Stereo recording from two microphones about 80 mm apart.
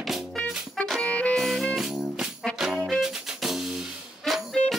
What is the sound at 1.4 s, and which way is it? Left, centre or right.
Music, centre.